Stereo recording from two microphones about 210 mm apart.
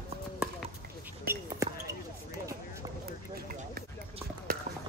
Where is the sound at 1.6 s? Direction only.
15° right (ahead or behind).